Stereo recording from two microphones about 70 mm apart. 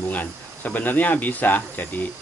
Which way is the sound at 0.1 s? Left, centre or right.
Left.